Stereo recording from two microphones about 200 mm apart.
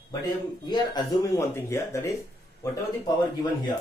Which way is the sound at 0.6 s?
20° left (ahead or behind).